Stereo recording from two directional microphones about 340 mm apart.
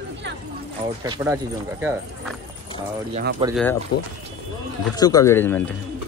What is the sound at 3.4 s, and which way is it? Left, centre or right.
Speech, centre.